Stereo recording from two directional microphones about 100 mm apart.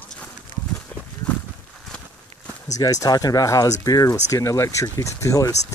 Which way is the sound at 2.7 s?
35° left (ahead or behind).